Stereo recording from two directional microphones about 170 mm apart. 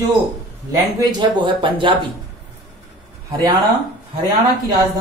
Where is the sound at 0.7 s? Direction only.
25° right (ahead or behind).